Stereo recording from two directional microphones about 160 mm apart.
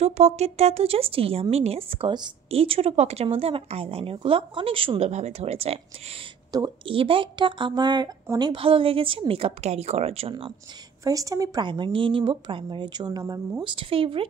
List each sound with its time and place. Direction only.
0.0 s speech: 40° right (ahead or behind)
6.5 s speech: 30° right (ahead or behind)
11.1 s speech: 20° right (ahead or behind)